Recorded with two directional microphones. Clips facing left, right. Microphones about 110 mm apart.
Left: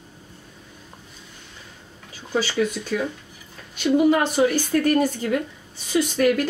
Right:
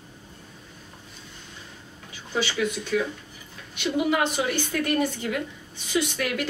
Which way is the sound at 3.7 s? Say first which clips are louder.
Left 7 dB; 40° left (ahead or behind).